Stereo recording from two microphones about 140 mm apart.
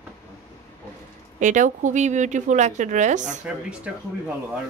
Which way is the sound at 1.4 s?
65° right (ahead or behind).